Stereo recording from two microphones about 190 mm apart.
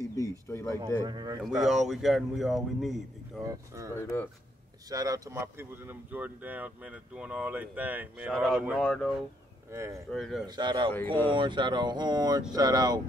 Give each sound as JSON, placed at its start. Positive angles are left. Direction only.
{"t": 0.0, "sound": "speech", "side_deg": 15}
{"t": 1.0, "sound": "speech", "side_deg": -20}
{"t": 1.6, "sound": "speech", "side_deg": 0}
{"t": 3.4, "sound": "speech", "side_deg": -15}
{"t": 3.9, "sound": "speech", "side_deg": 15}
{"t": 4.8, "sound": "speech", "side_deg": -20}
{"t": 9.7, "sound": "speech", "side_deg": -15}
{"t": 10.1, "sound": "speech", "side_deg": 0}
{"t": 10.4, "sound": "speech", "side_deg": -25}